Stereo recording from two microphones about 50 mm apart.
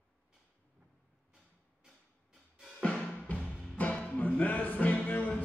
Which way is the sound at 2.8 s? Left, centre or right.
Left.